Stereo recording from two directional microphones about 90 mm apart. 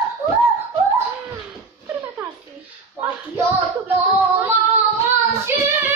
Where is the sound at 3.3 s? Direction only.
25° right (ahead or behind).